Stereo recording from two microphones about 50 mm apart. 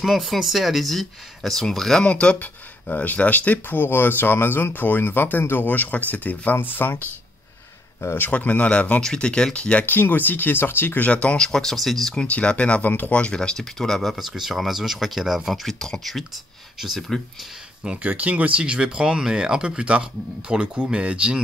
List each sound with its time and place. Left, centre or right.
0.0 s speech: centre
2.0 s speech: centre
2.3 s speech: left
8.2 s speech: left
9.8 s speech: left
11.0 s speech: left; by 12.2 s centre
12.2 s speech: left
13.4 s speech: centre
18.0 s speech: right